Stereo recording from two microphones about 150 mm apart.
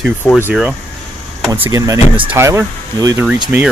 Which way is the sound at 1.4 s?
15° right (ahead or behind).